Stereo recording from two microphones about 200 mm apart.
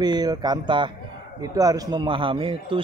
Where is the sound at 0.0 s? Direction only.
20° right (ahead or behind).